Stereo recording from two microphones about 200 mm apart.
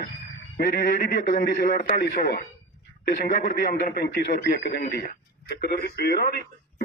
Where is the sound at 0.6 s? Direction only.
45° left (ahead or behind).